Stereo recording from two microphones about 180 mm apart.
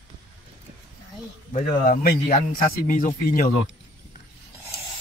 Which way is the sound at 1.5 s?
50° left (ahead or behind).